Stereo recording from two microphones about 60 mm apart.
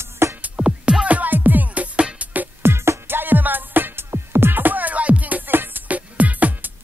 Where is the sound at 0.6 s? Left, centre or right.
Centre.